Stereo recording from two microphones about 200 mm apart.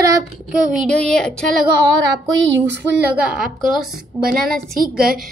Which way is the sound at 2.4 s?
60° right (ahead or behind).